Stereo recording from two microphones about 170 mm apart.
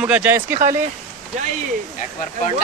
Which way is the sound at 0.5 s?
50° right (ahead or behind).